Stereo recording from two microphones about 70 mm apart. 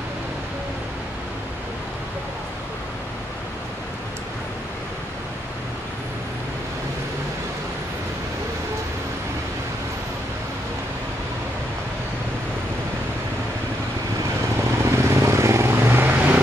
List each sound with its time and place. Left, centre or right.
14.6 s vehicle: right